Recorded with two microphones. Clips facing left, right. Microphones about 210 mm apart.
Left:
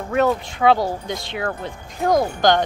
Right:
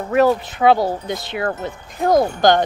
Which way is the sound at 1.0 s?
5° right (ahead or behind).